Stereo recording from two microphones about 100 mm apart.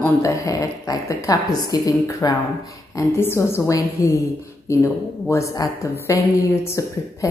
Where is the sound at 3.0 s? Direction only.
25° left (ahead or behind).